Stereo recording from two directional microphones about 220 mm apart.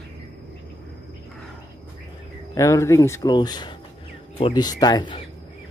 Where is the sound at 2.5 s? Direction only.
15° left (ahead or behind).